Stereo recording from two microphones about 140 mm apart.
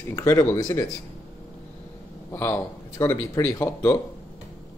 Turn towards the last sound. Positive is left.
turn(degrees=15)  # may be behind; listen again after turning